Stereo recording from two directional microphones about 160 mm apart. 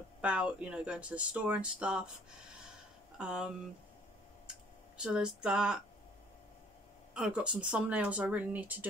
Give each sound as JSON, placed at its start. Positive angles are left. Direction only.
{"t": 0.2, "sound": "speech", "side_deg": -10}
{"t": 3.2, "sound": "speech", "side_deg": -5}
{"t": 4.9, "sound": "speech", "side_deg": -5}
{"t": 7.2, "sound": "speech", "side_deg": -5}